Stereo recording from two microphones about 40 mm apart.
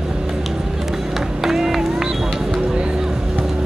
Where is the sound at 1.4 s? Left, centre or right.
Centre.